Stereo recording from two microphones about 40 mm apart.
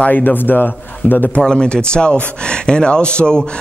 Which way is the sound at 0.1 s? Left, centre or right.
Left.